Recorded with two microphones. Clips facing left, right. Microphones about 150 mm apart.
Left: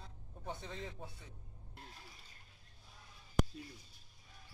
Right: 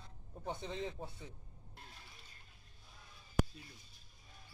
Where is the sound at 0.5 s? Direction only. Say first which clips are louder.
Right 4 dB; 20° right (ahead or behind).